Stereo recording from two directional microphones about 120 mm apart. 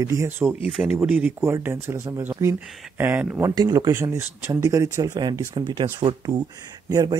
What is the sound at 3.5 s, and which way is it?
Speech, 35° right (ahead or behind).